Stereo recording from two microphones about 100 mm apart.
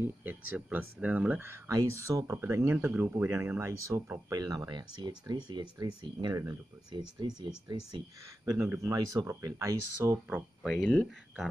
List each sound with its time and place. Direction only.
0.0 s speech: 20° right (ahead or behind)
1.4 s speech: 30° right (ahead or behind)
4.3 s speech: 40° right (ahead or behind)
8.5 s speech: 30° right (ahead or behind)
10.7 s speech: 10° left (ahead or behind)